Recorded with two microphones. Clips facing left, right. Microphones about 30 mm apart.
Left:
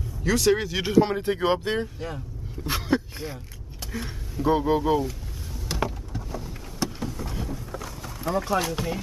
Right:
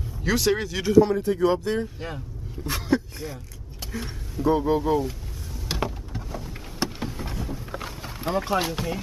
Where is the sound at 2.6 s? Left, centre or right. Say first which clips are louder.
Right 1 dB; centre.